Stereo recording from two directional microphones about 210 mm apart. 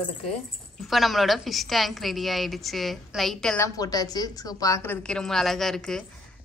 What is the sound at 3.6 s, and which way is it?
A woman's voice, 15° left (ahead or behind).